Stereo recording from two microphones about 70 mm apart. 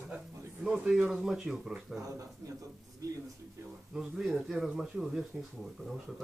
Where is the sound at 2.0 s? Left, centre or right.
Right.